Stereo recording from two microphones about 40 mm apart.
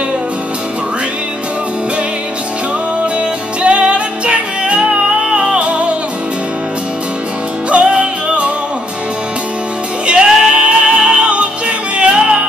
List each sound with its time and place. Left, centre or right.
3.6 s music: right
7.7 s music: right
10.0 s music: right